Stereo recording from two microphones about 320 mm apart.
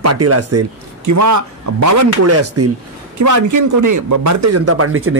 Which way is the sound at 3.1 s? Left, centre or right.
Right.